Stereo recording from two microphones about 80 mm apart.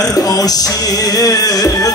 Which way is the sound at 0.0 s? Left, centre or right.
Left.